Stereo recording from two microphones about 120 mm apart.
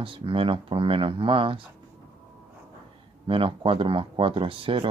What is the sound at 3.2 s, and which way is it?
Speech, 45° right (ahead or behind).